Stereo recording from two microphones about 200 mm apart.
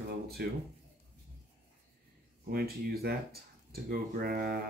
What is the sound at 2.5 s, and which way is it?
Speech, 50° right (ahead or behind).